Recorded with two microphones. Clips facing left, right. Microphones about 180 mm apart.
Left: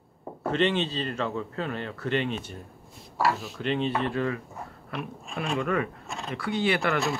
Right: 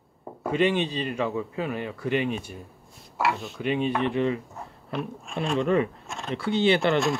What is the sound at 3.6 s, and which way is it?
Speech, 10° right (ahead or behind).